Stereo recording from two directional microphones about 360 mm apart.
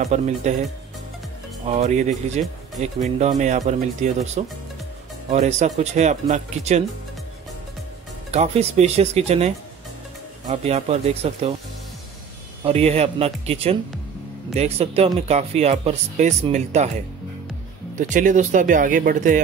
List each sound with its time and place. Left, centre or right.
0.0 s speech: centre
1.7 s speech: centre
8.3 s speech: centre
10.5 s speech: centre
12.6 s speech: centre
17.9 s speech: right